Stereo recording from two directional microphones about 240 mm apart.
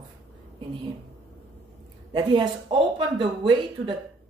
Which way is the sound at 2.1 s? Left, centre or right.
Centre.